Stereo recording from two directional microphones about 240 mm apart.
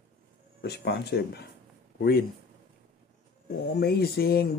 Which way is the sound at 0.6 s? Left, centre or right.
Left.